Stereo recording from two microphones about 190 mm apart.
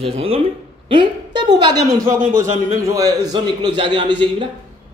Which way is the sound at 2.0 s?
45° right (ahead or behind).